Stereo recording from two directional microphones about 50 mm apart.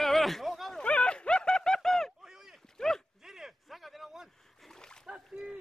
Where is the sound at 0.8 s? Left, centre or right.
Left; by 2.1 s centre.